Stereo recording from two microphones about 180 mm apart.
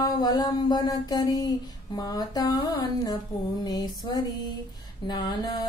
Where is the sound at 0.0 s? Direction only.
20° left (ahead or behind).